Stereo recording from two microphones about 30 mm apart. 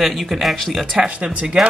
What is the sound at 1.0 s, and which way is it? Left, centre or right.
Speech, centre.